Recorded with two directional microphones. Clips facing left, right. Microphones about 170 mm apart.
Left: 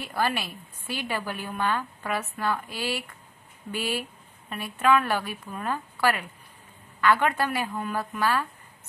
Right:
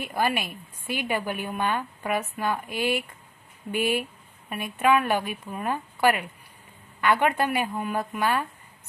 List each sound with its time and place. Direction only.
0.0 s a woman's voice: 15° right (ahead or behind)